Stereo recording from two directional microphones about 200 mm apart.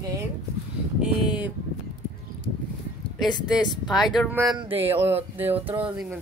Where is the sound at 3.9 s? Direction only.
Centre (ahead or behind).